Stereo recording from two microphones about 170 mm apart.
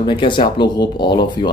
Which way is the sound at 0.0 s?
30° left (ahead or behind).